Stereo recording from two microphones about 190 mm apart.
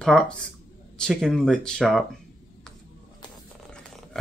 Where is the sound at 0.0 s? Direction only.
5° left (ahead or behind).